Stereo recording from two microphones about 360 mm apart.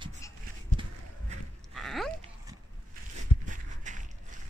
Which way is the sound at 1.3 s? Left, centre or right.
Centre.